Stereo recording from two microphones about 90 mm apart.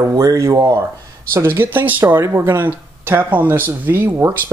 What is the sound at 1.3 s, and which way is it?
Speech, 25° right (ahead or behind).